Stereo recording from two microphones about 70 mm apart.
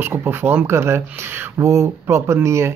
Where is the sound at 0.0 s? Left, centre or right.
Right.